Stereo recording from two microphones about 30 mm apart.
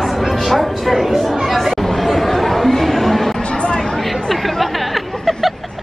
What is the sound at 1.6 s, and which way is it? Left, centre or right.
Chatter, centre.